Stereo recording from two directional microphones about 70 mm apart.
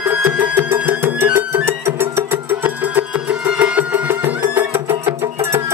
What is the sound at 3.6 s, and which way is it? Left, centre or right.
Music, right.